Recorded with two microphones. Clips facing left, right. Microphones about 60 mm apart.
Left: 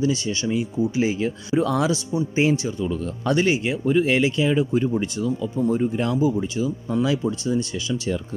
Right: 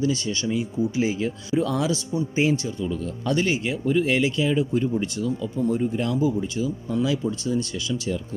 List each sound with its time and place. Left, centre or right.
0.0 s speech: left
1.9 s speech: left